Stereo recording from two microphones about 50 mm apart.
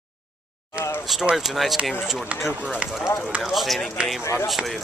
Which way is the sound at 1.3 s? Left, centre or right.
Centre.